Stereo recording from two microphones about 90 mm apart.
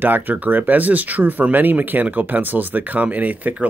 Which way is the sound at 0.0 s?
20° right (ahead or behind).